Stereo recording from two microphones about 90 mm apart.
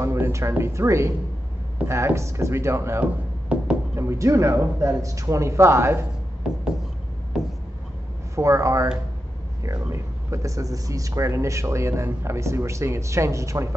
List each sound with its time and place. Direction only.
0.0 s speech: 35° right (ahead or behind)
3.0 s a sound: 15° right (ahead or behind)
3.9 s speech: 35° right (ahead or behind)
8.4 s speech: 35° right (ahead or behind)